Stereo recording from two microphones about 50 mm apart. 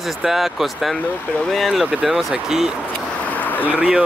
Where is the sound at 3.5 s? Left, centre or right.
Left.